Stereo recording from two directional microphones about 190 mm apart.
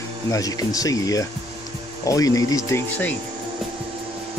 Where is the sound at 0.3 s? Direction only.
20° left (ahead or behind).